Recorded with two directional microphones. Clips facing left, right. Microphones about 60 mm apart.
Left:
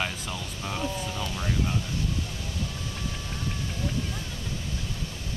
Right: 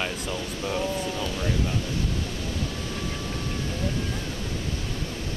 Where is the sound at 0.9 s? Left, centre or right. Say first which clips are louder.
Right 4 dB; right.